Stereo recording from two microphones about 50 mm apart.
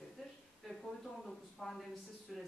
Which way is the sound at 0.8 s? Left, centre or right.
Centre.